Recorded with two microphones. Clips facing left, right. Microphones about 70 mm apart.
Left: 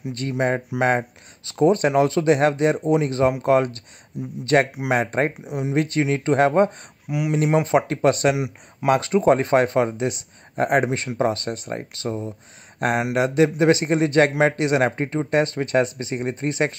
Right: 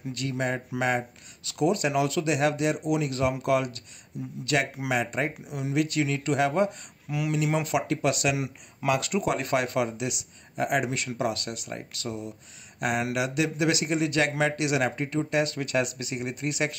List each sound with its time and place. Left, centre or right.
0.1 s speech: left
4.1 s speech: left
4.5 s speech: left
5.4 s speech: left
7.1 s speech: centre